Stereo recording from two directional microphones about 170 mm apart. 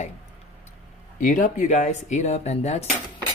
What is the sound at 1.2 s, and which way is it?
Speech, 50° left (ahead or behind).